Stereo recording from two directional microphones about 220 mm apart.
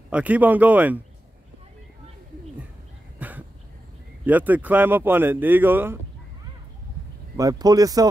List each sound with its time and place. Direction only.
0.1 s speech: 5° right (ahead or behind)
3.2 s a sound: 5° right (ahead or behind)
4.3 s speech: 5° right (ahead or behind)
7.3 s speech: 15° right (ahead or behind)